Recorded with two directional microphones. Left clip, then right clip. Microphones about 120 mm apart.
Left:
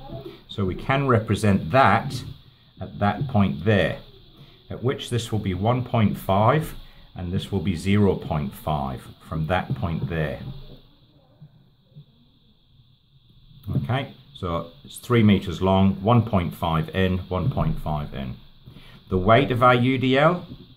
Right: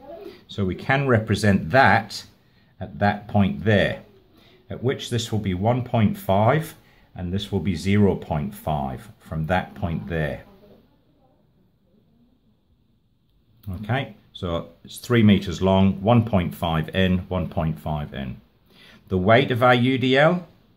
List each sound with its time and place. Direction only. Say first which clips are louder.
0.5 s speech: right 2 dB; 20° left (ahead or behind)
13.8 s speech: right 3 dB; 25° left (ahead or behind)